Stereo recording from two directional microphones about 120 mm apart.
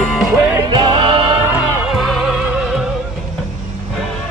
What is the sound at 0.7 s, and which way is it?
Music, 40° right (ahead or behind).